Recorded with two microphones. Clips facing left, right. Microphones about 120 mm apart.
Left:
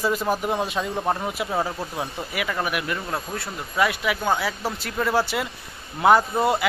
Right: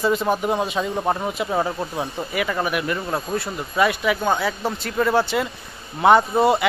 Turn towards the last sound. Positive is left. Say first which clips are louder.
# right 4 dB
turn(degrees=0)  # may be behind; listen again after turning